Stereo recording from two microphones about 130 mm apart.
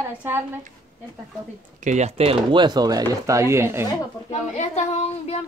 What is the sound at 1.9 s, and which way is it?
Speech, 60° right (ahead or behind).